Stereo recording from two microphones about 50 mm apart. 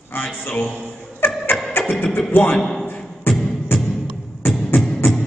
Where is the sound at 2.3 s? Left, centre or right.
Left.